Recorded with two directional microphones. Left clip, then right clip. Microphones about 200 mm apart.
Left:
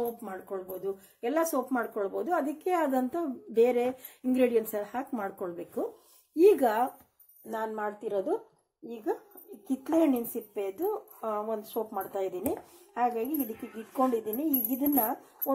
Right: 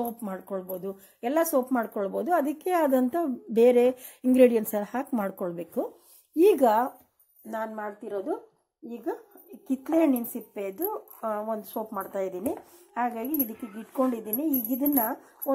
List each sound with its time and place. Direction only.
0.2 s speech: 45° right (ahead or behind)
6.6 s speech: 25° right (ahead or behind)